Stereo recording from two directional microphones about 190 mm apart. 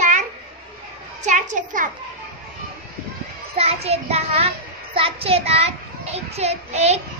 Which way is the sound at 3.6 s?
30° right (ahead or behind).